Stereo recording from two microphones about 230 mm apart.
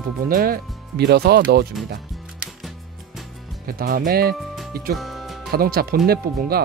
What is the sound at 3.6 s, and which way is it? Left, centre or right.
Speech, right.